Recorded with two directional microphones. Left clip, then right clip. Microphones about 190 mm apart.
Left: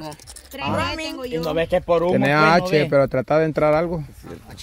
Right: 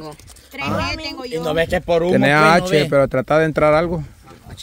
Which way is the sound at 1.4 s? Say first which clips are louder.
Right 2 dB; 75° right (ahead or behind).